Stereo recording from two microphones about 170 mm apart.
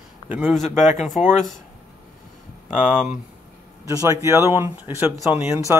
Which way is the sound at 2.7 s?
5° right (ahead or behind).